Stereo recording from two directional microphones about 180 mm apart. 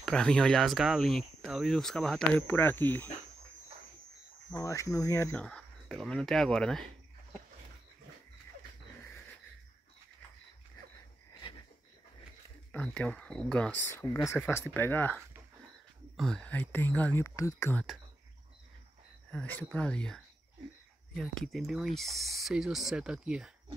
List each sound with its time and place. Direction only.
0.0 s speech: 5° left (ahead or behind)
4.5 s speech: 10° left (ahead or behind)
12.7 s speech: 5° left (ahead or behind)
13.8 s speech: 15° left (ahead or behind)
19.3 s speech: 10° left (ahead or behind)
21.2 s speech: centre (ahead or behind)